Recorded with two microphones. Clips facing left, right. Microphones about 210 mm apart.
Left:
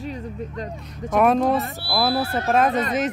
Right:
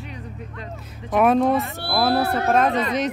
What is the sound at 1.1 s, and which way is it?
Speech, centre (ahead or behind).